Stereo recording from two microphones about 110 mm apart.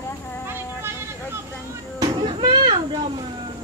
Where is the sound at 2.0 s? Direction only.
45° right (ahead or behind).